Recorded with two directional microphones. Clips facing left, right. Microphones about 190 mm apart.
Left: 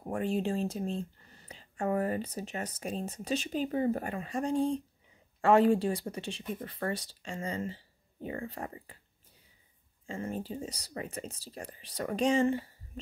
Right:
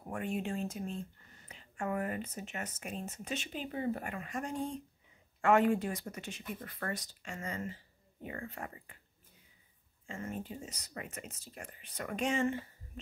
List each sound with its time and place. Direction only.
0.1 s speech: 35° left (ahead or behind)
10.0 s speech: 35° left (ahead or behind)